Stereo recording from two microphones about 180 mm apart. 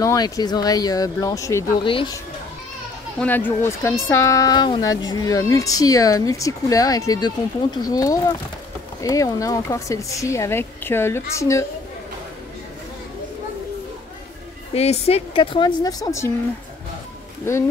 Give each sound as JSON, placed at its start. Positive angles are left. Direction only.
{"t": 0.0, "sound": "a woman's voice", "side_deg": 20}
{"t": 1.9, "sound": "a woman's voice", "side_deg": 30}
{"t": 3.2, "sound": "a woman's voice", "side_deg": 10}
{"t": 14.7, "sound": "a woman's voice", "side_deg": 35}
{"t": 17.4, "sound": "speech", "side_deg": 15}